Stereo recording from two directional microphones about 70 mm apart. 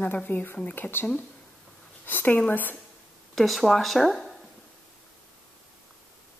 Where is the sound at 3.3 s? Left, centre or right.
Centre.